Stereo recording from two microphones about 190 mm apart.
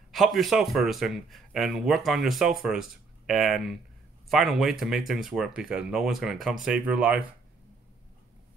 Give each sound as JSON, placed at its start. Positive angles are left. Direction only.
{"t": 0.1, "sound": "a man's voice", "side_deg": 0}